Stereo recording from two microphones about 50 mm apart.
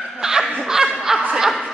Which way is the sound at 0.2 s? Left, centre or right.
Centre.